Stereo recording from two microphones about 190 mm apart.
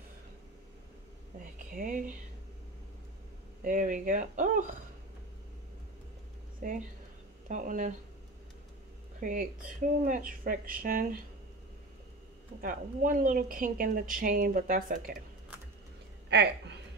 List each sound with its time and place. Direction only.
1.4 s speech: 45° right (ahead or behind)
3.6 s speech: 45° right (ahead or behind)
6.6 s speech: 45° right (ahead or behind)
9.2 s speech: 45° right (ahead or behind)
12.6 s speech: 45° right (ahead or behind)
16.3 s speech: 65° right (ahead or behind)